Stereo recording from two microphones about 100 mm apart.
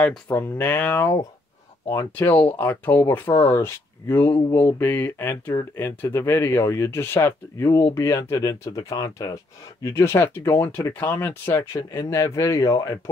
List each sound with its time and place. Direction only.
0.3 s speech: 20° left (ahead or behind)
2.1 s speech: 15° left (ahead or behind)
4.3 s speech: 45° left (ahead or behind)
4.6 s speech: 20° left (ahead or behind); by 9.4 s 35° left (ahead or behind)
9.8 s speech: 25° left (ahead or behind)